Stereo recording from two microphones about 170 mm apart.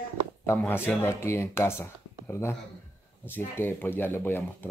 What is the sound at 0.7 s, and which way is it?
Speech, 15° left (ahead or behind).